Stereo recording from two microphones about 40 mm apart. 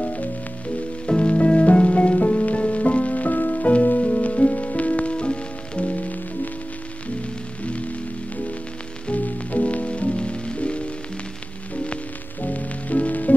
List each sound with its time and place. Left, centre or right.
0.0 s music: left
1.0 s music: left
9.1 s music: left
12.4 s music: left